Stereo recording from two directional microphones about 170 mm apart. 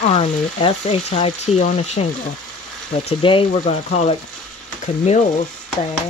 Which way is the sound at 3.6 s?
45° left (ahead or behind).